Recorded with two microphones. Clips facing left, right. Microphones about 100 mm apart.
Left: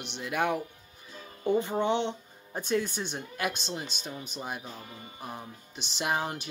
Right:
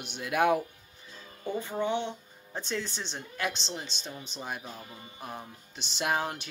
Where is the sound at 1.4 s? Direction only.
20° left (ahead or behind).